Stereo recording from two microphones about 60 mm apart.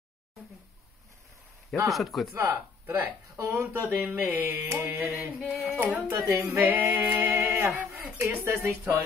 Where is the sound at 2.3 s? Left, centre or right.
Right.